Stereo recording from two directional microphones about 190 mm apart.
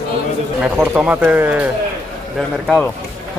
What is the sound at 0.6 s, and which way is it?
Speech, 5° right (ahead or behind).